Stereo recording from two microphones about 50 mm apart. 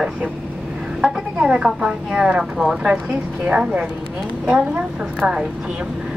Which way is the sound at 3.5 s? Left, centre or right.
Right.